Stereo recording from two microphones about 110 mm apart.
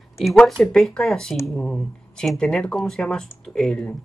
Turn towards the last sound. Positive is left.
turn(degrees=5)  # may be behind; listen again after turning